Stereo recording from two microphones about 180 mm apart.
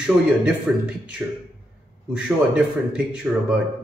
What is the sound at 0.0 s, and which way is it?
Speech, 5° right (ahead or behind).